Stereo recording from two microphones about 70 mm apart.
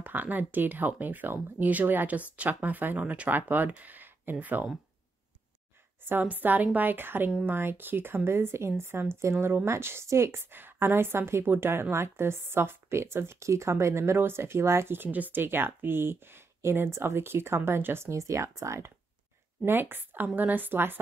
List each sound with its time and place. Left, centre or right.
0.0 s speech: right
6.0 s a woman's voice: right
19.6 s a woman's voice: right